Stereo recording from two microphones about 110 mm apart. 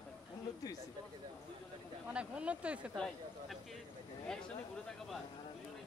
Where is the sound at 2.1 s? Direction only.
10° right (ahead or behind).